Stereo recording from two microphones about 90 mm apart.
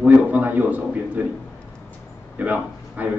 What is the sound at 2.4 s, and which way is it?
Speech, 15° right (ahead or behind).